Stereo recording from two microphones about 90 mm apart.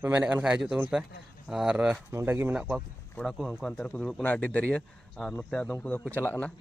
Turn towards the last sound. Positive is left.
turn(degrees=20)  # may be behind; listen again after turning